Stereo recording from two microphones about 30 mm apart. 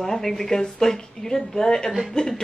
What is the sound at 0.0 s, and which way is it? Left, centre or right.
A woman's voice, centre.